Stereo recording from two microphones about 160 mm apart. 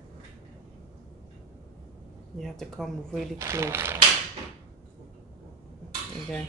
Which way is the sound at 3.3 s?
15° right (ahead or behind).